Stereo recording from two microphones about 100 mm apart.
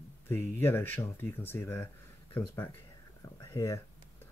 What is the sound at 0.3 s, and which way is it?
Speech, 20° left (ahead or behind).